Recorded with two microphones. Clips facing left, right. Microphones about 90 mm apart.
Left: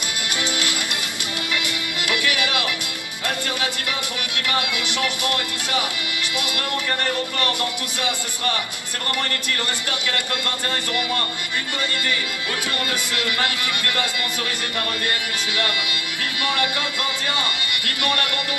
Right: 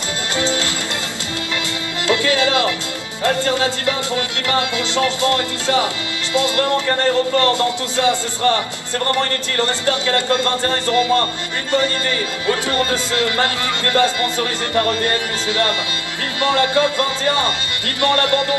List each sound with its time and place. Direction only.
0.4 s music: 25° right (ahead or behind)
2.0 s speech: 25° right (ahead or behind)
12.4 s speech: 30° right (ahead or behind)